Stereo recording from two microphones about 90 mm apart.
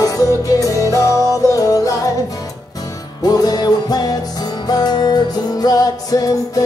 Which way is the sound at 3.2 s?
45° left (ahead or behind).